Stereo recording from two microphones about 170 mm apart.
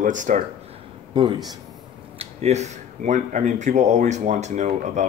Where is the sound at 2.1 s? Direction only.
40° right (ahead or behind).